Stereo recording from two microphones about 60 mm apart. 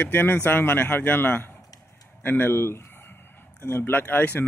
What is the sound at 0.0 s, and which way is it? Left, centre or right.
Speech, left.